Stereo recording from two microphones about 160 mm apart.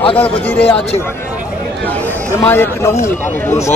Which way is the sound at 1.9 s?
15° left (ahead or behind).